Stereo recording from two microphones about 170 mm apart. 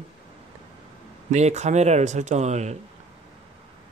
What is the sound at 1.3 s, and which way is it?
Speech, 40° right (ahead or behind).